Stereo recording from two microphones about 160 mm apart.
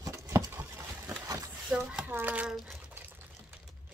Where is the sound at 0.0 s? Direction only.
20° right (ahead or behind).